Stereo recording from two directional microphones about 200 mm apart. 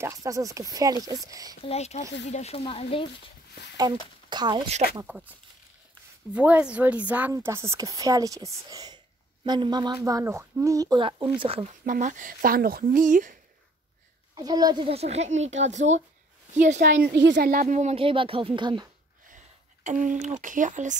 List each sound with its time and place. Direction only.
0.0 s speech: 15° right (ahead or behind)
1.6 s speech: 30° left (ahead or behind)
4.3 s speech: 20° right (ahead or behind)
5.0 s speech: 5° right (ahead or behind)
6.3 s speech: 5° right (ahead or behind); by 11.7 s 30° right (ahead or behind)
11.8 s speech: 40° right (ahead or behind)
14.3 s speech: 20° right (ahead or behind)
16.5 s speech: 35° right (ahead or behind); by 17.5 s 60° right (ahead or behind)
17.5 s speech: 40° right (ahead or behind); by 18.9 s 25° right (ahead or behind)
19.2 s speech: 40° right (ahead or behind)